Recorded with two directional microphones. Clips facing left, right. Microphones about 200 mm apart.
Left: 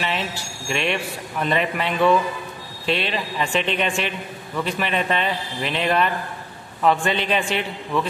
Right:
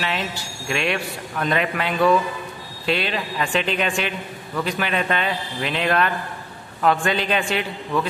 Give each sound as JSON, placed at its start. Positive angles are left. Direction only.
{"t": 0.0, "sound": "a man's voice", "side_deg": 0}